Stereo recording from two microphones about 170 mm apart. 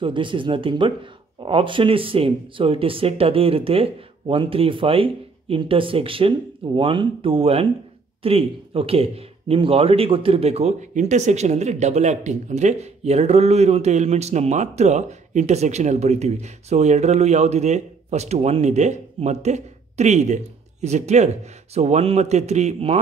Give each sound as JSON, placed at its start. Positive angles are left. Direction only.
{"t": 0.0, "sound": "speech", "side_deg": -30}